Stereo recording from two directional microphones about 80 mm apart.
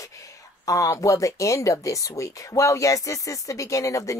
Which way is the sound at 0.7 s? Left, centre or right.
Left.